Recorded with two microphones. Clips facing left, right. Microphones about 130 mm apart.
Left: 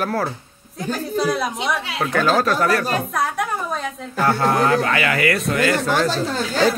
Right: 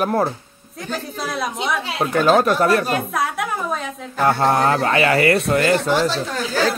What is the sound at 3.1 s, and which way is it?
Speech, 5° right (ahead or behind).